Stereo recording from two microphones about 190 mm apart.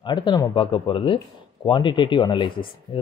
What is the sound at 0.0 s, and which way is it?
Speech, 25° left (ahead or behind).